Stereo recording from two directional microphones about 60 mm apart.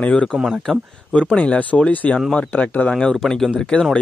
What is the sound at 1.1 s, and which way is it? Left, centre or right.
Speech, left.